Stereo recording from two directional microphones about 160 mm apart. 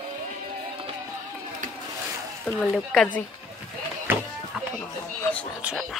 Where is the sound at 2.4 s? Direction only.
5° left (ahead or behind).